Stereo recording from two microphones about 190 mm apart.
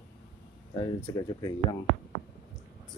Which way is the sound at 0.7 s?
25° left (ahead or behind).